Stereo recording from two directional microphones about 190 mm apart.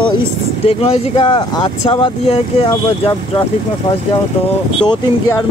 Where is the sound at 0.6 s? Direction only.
30° left (ahead or behind).